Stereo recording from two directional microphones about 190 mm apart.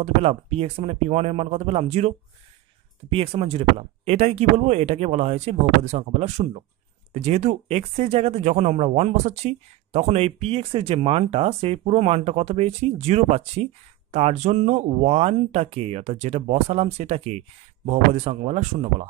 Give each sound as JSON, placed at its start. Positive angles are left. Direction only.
{"t": 0.0, "sound": "speech", "side_deg": -30}